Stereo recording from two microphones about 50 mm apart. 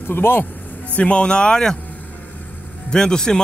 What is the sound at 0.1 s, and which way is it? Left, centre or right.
Speech, left.